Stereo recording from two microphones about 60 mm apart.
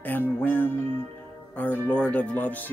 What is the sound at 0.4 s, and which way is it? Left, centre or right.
Music, left.